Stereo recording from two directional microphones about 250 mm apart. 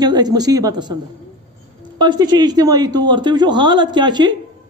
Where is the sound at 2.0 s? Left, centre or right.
Centre.